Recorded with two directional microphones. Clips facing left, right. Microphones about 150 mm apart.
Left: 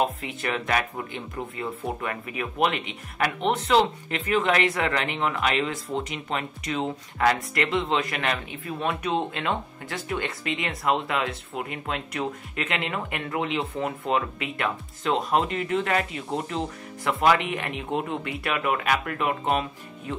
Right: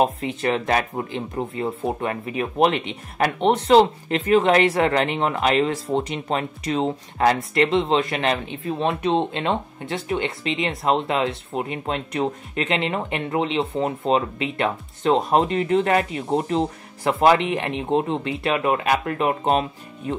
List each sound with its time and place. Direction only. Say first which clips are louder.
0.0 s speech: right 6 dB; 30° right (ahead or behind)